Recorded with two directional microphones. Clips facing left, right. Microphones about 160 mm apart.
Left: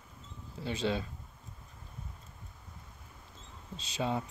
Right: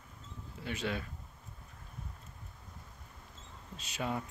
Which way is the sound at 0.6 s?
30° left (ahead or behind).